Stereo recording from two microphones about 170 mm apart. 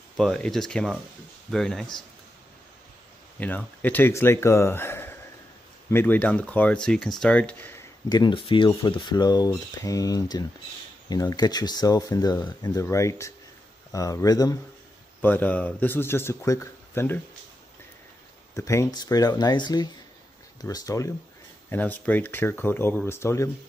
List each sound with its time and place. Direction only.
0.2 s speech: centre (ahead or behind)
3.3 s speech: 10° left (ahead or behind)
8.1 s speech: 25° left (ahead or behind)
15.2 s speech: 10° left (ahead or behind)
18.5 s speech: 15° left (ahead or behind)